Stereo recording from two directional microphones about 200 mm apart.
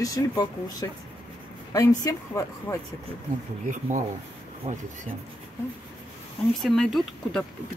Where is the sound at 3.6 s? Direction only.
40° right (ahead or behind).